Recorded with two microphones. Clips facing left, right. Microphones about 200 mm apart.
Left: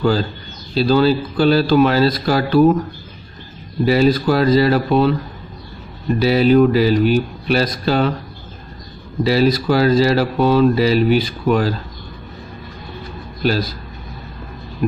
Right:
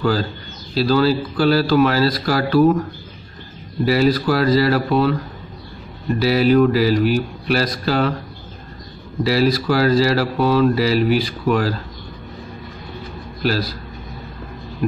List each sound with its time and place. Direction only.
0.0 s speech: 20° left (ahead or behind)
3.8 s speech: 20° left (ahead or behind)
6.1 s speech: 20° left (ahead or behind)
9.2 s speech: 20° left (ahead or behind)
13.4 s a man's voice: 20° left (ahead or behind)
14.8 s speech: 15° left (ahead or behind)